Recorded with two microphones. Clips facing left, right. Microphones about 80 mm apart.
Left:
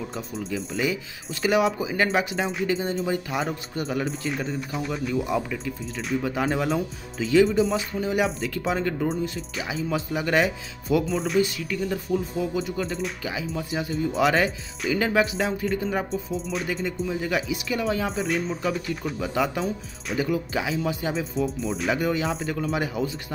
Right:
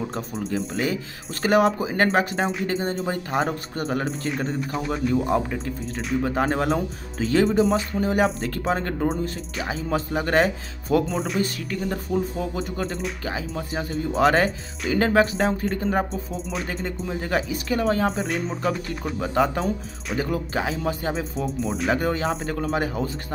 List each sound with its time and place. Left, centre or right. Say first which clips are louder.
0.1 s speech: right 3 dB; right
4.6 s speech: right 3 dB; centre
5.1 s speech: right 3 dB; right